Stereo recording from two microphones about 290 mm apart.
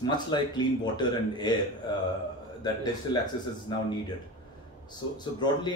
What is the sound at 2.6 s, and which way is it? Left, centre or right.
Speech, centre.